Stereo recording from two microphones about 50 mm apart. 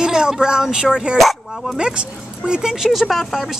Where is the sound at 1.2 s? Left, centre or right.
Centre.